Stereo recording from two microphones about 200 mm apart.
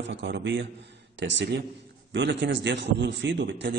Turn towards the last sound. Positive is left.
turn(degrees=-60)  # may be behind; listen again after turning